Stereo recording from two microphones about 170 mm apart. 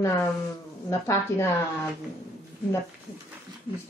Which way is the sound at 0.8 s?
20° left (ahead or behind).